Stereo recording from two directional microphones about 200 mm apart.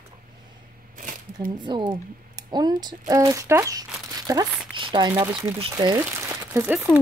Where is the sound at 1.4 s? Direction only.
25° right (ahead or behind).